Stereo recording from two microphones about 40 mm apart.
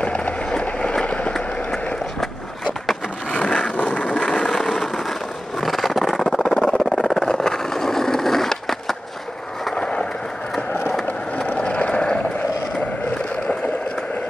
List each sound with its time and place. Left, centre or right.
0.0 s a sound: left
2.1 s skateboard: centre
3.3 s vehicle: left
4.5 s a sound: centre
6.6 s vehicle: centre
9.8 s skateboard: left
11.4 s vehicle: left